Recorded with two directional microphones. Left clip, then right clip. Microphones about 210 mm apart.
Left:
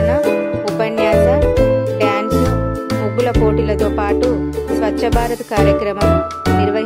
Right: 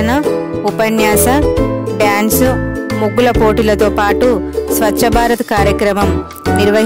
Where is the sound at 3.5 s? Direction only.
60° right (ahead or behind).